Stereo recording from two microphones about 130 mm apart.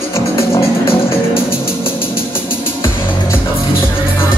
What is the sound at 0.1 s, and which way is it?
Music, 20° left (ahead or behind).